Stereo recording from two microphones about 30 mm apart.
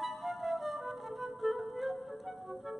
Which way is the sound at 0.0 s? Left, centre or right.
Centre.